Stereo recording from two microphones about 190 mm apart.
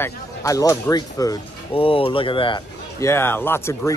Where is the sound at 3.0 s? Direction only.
15° left (ahead or behind).